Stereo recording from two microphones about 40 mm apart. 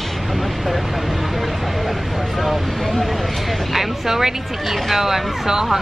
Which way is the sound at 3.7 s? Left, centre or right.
Centre.